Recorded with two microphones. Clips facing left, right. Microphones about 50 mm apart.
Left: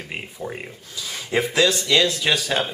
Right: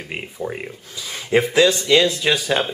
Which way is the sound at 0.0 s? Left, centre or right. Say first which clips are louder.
Right 3 dB; centre.